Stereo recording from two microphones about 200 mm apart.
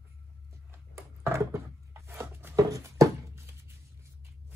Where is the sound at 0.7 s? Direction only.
15° right (ahead or behind).